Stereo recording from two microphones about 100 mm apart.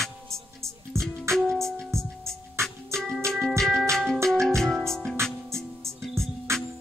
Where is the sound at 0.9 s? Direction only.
30° right (ahead or behind).